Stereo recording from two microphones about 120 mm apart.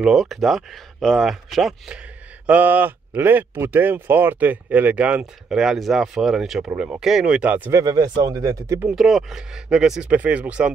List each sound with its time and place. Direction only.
0.0 s speech: centre (ahead or behind)
2.4 s a man's voice: 15° right (ahead or behind)
7.7 s speech: 30° right (ahead or behind)
8.8 s speech: centre (ahead or behind)